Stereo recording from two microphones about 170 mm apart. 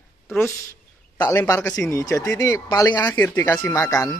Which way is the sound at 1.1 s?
15° left (ahead or behind).